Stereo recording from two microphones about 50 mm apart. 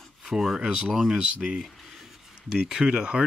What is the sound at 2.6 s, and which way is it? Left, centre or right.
Speech, centre.